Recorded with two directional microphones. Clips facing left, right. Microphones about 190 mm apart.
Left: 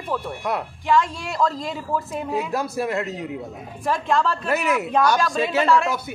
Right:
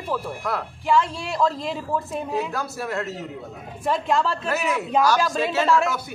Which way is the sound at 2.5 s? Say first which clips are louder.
Left 4 dB; 20° left (ahead or behind).